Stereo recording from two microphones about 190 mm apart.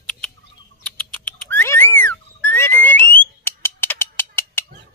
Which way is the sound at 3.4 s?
15° left (ahead or behind).